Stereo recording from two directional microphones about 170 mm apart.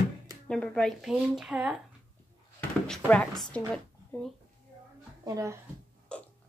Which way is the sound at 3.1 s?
5° left (ahead or behind).